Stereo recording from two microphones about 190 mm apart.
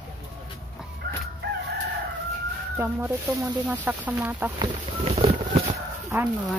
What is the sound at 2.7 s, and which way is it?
Speech, 10° right (ahead or behind).